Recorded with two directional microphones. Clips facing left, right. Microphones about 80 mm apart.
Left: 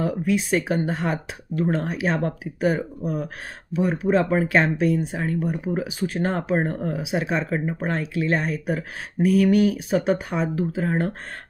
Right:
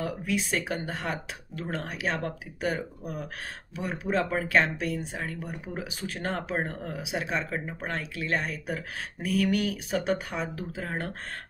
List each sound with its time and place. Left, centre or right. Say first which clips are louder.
0.0 s speech: left 7 dB; left
3.8 s speech: left 8 dB; centre